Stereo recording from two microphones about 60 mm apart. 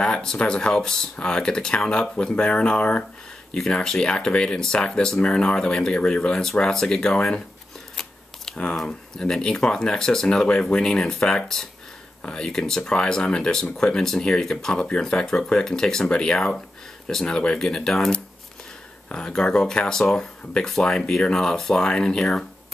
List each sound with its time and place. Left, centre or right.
0.0 s speech: centre
3.5 s speech: centre
7.9 s a sound: centre
8.7 s speech: centre